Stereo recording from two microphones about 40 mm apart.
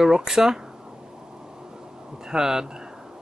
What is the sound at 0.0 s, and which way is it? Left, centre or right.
Speech, centre.